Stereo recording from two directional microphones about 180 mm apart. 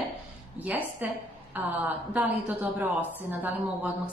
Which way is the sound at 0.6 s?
10° right (ahead or behind).